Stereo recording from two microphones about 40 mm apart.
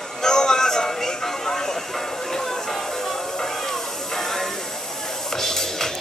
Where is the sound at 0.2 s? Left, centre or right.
Centre.